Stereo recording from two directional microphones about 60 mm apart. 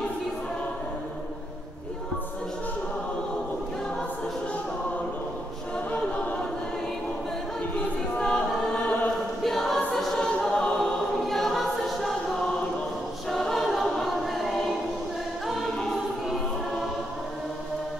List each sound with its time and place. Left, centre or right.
8.2 s choir: centre
9.4 s choir: centre
13.3 s choir: centre